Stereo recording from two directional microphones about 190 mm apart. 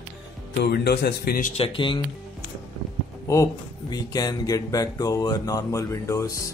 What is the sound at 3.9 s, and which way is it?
Speech, 20° left (ahead or behind).